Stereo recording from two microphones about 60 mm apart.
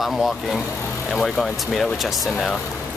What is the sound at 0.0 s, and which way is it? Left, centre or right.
Speech, centre.